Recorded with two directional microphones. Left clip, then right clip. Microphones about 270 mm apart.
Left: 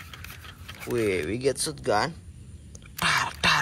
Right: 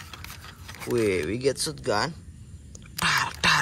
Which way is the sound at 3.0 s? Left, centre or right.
Centre.